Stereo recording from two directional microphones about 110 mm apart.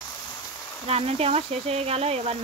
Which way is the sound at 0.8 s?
70° right (ahead or behind).